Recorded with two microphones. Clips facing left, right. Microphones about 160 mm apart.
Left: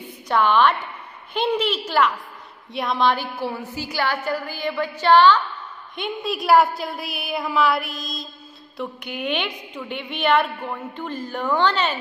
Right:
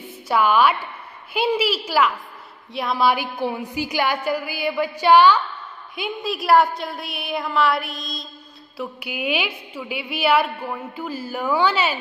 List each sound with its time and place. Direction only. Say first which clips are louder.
0.3 s a woman's voice: even; 10° right (ahead or behind)